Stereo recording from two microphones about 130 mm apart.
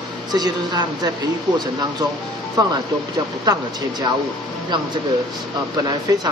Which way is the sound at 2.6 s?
30° right (ahead or behind).